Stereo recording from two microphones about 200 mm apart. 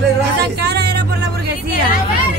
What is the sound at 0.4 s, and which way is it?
Music, 55° right (ahead or behind).